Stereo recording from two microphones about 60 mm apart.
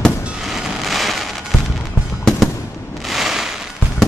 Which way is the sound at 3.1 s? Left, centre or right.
Centre.